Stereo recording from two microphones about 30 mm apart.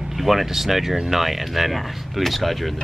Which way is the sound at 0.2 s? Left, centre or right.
Centre.